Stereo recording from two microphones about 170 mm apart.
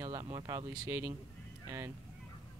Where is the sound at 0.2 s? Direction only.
30° right (ahead or behind).